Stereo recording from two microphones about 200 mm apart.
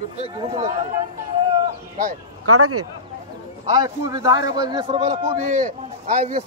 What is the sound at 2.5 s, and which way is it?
Speech, 90° right.